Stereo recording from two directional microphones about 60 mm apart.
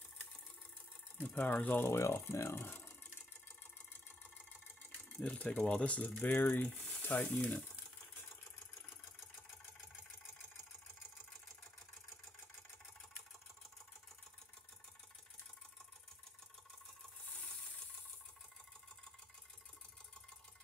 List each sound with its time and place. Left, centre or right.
1.3 s speech: left
1.8 s speech: left
5.2 s speech: left